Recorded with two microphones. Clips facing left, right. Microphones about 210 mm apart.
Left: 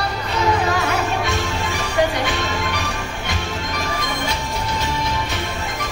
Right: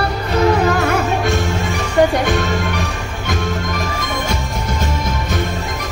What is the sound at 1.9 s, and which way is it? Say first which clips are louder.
Music: right 6 dB; 45° right (ahead or behind).